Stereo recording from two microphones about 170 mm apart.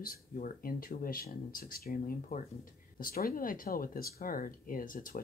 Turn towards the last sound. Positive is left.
turn(degrees=55)  # may be behind; listen again after turning